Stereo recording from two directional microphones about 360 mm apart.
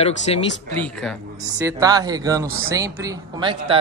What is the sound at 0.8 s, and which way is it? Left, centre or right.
Speech, centre.